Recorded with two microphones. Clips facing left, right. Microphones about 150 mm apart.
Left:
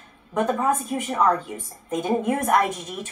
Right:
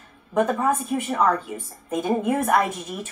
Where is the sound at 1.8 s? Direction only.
5° right (ahead or behind).